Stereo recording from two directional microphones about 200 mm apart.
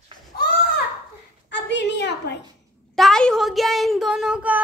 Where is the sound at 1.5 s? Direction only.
60° left (ahead or behind).